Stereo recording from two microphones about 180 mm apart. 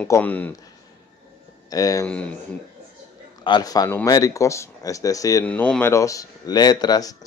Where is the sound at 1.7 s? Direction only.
20° left (ahead or behind).